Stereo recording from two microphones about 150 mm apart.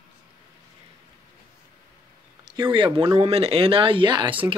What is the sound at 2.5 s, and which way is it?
Speech, 30° right (ahead or behind).